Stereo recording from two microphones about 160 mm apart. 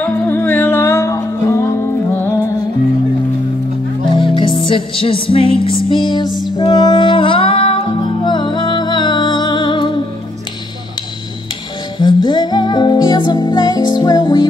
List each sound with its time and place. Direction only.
0.0 s music: 10° left (ahead or behind)
4.1 s music: 30° left (ahead or behind)
12.0 s music: 25° left (ahead or behind)